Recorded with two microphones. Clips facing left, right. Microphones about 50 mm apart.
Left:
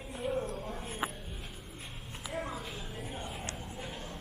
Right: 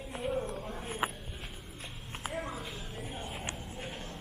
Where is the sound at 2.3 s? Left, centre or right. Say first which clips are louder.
Left 2 dB; centre.